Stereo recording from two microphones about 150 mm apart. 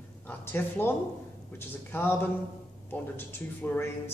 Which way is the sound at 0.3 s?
15° left (ahead or behind).